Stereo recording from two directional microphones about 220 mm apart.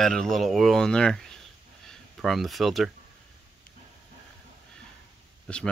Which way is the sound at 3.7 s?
40° left (ahead or behind).